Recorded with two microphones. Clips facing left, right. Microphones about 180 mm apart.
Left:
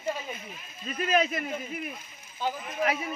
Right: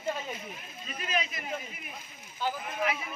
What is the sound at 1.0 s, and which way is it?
Speech, 50° left (ahead or behind).